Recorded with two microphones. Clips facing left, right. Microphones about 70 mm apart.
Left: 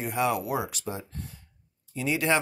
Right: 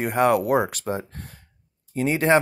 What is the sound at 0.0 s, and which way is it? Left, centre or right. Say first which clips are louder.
Speech: right 7 dB; right.